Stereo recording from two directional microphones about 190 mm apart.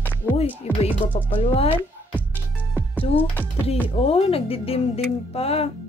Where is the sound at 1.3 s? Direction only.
30° left (ahead or behind).